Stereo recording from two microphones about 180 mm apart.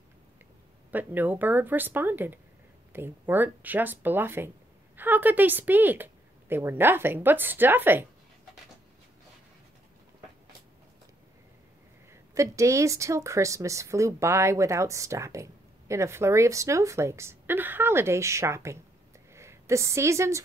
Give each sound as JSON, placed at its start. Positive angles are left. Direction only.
{"t": 0.9, "sound": "speech", "side_deg": -10}
{"t": 12.1, "sound": "speech", "side_deg": -15}